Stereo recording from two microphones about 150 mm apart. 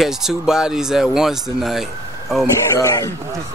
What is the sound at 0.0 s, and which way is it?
Speech, 5° right (ahead or behind).